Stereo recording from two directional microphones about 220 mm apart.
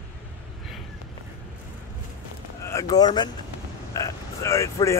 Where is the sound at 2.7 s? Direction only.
15° left (ahead or behind).